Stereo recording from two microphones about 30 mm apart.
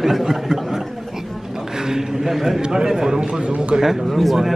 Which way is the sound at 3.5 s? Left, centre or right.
Right.